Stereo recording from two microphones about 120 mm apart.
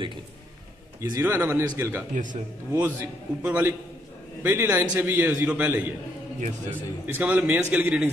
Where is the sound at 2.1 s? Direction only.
90° right.